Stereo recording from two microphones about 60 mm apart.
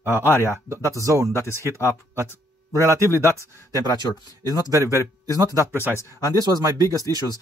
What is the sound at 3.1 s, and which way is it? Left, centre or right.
Speech, left.